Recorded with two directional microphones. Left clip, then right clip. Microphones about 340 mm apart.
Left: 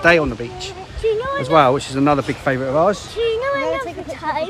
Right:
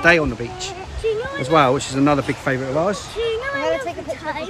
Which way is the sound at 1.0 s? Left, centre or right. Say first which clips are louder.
Left 3 dB; centre.